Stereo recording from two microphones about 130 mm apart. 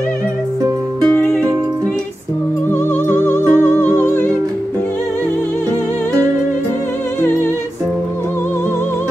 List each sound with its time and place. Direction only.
1.1 s music: 10° left (ahead or behind)
3.3 s music: 15° left (ahead or behind)